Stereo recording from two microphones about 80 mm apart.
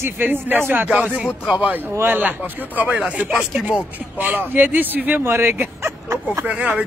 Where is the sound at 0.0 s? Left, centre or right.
Right.